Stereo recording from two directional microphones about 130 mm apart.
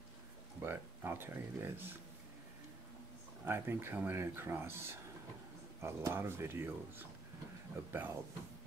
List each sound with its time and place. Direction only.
0.6 s speech: 15° right (ahead or behind)
3.4 s speech: 15° right (ahead or behind)